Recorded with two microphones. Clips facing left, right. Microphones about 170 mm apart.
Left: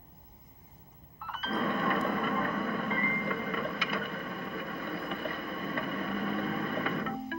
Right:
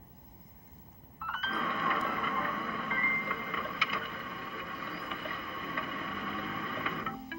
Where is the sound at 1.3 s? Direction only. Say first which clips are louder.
Left 5 dB; 40° left (ahead or behind).